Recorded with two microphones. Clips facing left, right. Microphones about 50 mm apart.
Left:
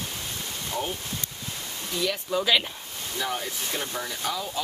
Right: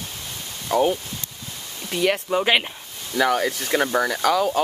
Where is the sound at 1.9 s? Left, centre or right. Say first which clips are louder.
Right 6 dB; right.